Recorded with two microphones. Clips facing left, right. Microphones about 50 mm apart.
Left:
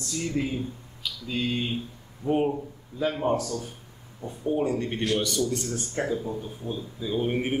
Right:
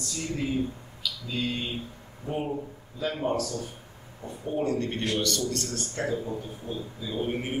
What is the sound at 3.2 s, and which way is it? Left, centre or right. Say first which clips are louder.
Speech: left 2 dB; centre.